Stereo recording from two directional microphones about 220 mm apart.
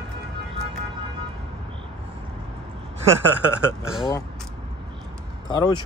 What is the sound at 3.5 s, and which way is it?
Speech, 5° right (ahead or behind).